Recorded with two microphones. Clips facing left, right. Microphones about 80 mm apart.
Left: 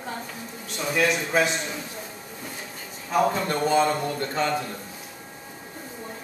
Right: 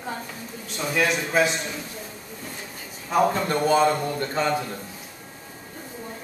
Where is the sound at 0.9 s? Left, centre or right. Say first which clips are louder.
Even; centre.